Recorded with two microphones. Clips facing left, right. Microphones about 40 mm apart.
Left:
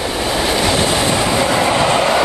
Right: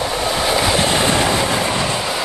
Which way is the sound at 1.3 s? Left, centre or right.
Centre.